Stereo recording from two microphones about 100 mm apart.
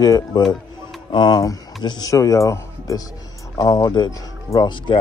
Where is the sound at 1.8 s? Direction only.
40° left (ahead or behind).